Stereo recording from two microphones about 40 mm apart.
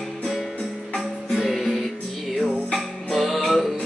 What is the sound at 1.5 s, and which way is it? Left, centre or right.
Music, centre.